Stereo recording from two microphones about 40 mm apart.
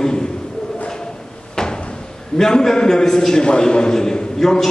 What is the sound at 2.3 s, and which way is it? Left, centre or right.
A man's voice, centre.